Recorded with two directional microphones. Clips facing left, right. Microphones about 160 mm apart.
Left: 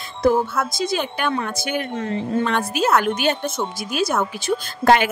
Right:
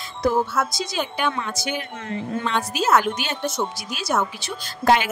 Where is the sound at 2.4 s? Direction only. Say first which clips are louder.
Left 3 dB; 55° left (ahead or behind).